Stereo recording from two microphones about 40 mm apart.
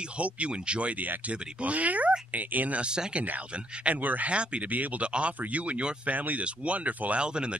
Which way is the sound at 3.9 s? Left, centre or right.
Right.